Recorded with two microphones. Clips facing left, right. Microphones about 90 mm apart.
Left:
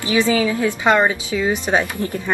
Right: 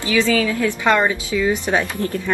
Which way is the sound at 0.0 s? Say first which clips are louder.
Left 1 dB; 20° left (ahead or behind).